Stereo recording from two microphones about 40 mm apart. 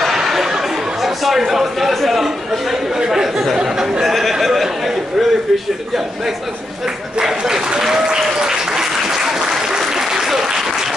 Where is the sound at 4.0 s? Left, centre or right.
Centre.